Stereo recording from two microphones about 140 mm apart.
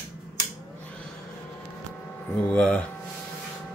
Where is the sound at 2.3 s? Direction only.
10° left (ahead or behind).